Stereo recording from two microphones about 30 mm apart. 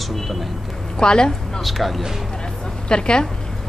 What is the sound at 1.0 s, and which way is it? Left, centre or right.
Speech, left.